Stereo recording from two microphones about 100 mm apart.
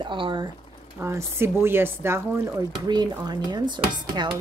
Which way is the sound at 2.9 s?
45° right (ahead or behind).